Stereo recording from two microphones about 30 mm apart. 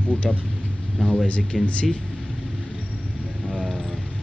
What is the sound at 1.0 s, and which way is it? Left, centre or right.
Speech, left.